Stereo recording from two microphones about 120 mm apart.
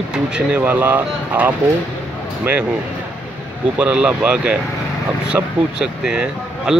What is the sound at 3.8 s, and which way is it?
Speech, 10° right (ahead or behind).